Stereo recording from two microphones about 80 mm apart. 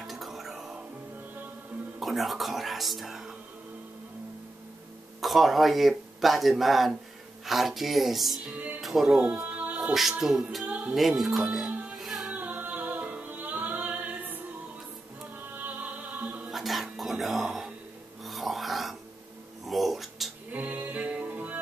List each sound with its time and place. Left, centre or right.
0.0 s music: centre
2.0 s speech: centre
5.2 s speech: centre
9.4 s music: centre
9.8 s speech: centre
11.6 s music: centre
12.0 s music: centre
12.3 s music: centre
15.5 s music: centre
16.4 s music: centre
18.2 s dog: centre
19.6 s music: centre
20.5 s music: right